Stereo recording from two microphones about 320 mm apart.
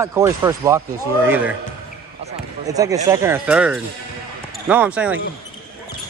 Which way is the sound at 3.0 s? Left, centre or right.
Centre.